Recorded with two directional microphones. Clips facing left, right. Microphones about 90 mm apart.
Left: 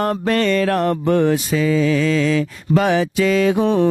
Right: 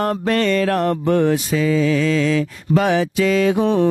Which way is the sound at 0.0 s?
15° left (ahead or behind).